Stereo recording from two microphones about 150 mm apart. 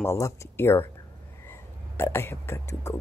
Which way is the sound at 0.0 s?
15° left (ahead or behind).